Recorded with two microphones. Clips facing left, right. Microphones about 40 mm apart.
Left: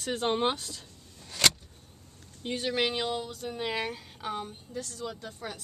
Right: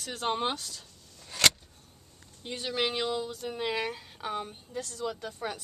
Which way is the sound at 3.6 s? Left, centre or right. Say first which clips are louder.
Right 1 dB; centre.